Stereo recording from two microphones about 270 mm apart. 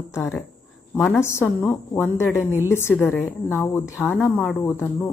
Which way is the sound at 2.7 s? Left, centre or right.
Centre.